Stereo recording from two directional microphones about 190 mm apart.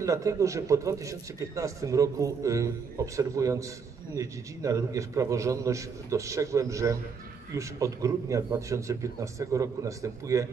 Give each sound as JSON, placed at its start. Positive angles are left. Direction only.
{"t": 0.0, "sound": "a man's voice", "side_deg": -15}